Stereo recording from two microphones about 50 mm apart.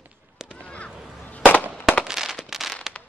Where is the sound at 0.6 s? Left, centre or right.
Left.